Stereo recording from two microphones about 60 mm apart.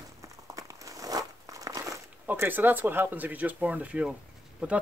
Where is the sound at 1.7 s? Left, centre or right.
Right.